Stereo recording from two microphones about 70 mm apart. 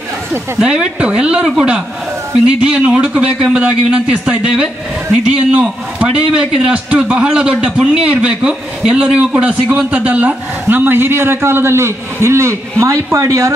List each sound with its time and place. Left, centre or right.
0.6 s a man's voice: centre; by 13.5 s right